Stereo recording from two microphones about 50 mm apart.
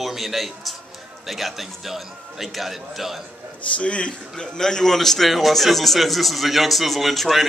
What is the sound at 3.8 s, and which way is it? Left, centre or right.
Speech, left.